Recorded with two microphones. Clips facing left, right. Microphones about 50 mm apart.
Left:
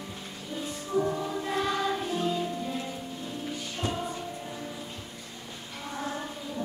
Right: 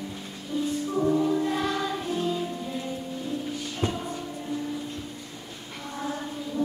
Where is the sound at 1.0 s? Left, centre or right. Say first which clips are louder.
Right 10 dB; centre.